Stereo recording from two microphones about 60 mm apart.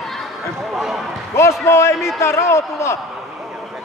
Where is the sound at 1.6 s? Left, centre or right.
Left.